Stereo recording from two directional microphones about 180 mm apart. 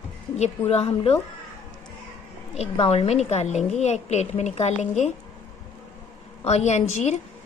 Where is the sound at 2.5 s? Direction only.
35° left (ahead or behind).